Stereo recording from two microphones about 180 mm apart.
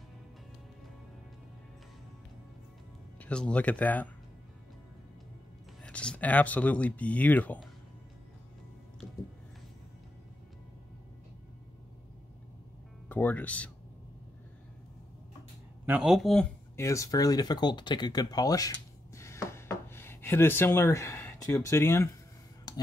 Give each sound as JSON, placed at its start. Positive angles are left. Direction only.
{"t": 3.2, "sound": "speech", "side_deg": 5}
{"t": 5.9, "sound": "speech", "side_deg": 5}
{"t": 13.1, "sound": "speech", "side_deg": 10}
{"t": 15.8, "sound": "speech", "side_deg": -5}
{"t": 16.7, "sound": "speech", "side_deg": 15}
{"t": 22.7, "sound": "a sound", "side_deg": 20}